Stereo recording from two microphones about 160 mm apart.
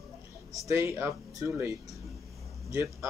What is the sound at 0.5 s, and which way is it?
Speech, 20° right (ahead or behind).